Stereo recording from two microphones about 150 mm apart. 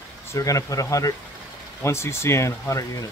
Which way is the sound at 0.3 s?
20° left (ahead or behind).